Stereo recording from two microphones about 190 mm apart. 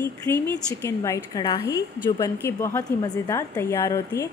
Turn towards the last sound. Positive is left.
turn(degrees=15)  # may be behind; listen again after turning